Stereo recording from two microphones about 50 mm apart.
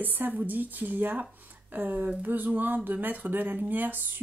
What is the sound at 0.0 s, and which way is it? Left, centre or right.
Speech, right.